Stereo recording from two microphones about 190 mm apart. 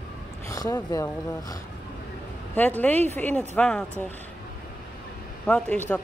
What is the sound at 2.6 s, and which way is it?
Speech, 10° left (ahead or behind).